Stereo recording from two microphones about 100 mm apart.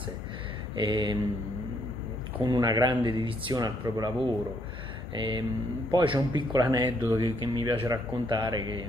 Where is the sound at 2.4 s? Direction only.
45° right (ahead or behind).